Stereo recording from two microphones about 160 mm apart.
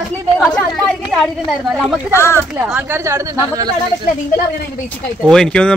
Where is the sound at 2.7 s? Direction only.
15° right (ahead or behind).